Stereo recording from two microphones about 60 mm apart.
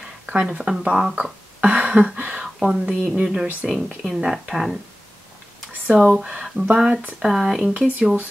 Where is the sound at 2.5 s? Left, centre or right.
Centre.